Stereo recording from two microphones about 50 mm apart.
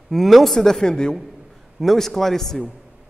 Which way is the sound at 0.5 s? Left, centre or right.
Centre.